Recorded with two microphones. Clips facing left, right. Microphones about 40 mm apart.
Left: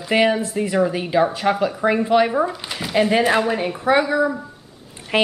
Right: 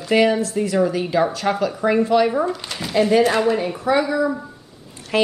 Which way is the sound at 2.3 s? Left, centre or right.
Centre.